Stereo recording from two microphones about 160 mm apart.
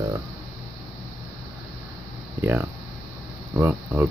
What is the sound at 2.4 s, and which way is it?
Speech, 15° right (ahead or behind).